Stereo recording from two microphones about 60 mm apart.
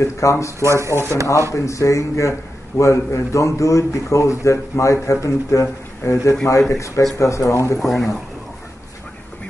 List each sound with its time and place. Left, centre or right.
0.0 s a man's voice: left
0.6 s speech: right
1.5 s a man's voice: left
7.8 s speech: centre